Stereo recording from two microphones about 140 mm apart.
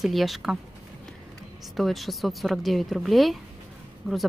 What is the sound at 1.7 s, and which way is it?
Speech, centre (ahead or behind).